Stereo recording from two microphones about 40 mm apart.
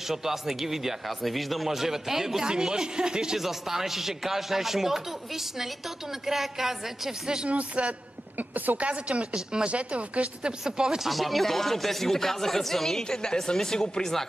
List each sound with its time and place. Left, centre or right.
0.1 s speech: centre
3.3 s speech: centre
7.4 s speech: right
8.4 s a woman's voice: right
8.8 s speech: right
9.3 s speech: centre
9.7 s speech: right
10.6 s speech: centre
11.1 s speech: centre
13.2 s speech: centre